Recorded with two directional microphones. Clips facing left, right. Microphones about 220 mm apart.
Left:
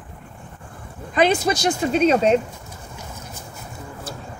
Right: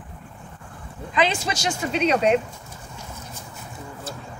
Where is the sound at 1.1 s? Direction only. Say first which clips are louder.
Left 5 dB; 55° left (ahead or behind).